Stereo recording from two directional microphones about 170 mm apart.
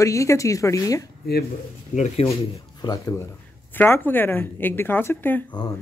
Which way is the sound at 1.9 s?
45° left (ahead or behind).